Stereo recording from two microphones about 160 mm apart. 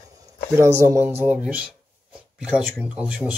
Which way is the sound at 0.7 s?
15° right (ahead or behind).